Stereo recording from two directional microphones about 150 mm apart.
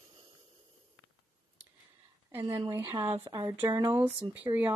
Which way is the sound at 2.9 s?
30° right (ahead or behind).